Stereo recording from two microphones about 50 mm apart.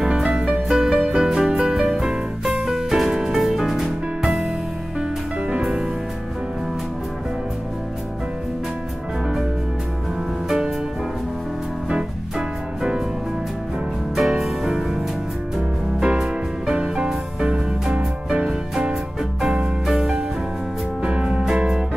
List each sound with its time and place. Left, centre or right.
0.0 s music: centre
5.5 s music: centre
11.9 s music: centre
14.1 s music: centre
21.0 s music: centre
21.3 s music: centre